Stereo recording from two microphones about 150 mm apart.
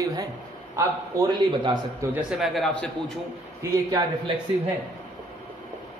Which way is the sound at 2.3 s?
Centre (ahead or behind).